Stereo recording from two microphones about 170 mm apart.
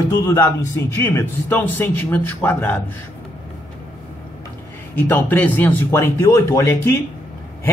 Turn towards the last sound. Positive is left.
turn(degrees=15)  # may be behind; listen again after turning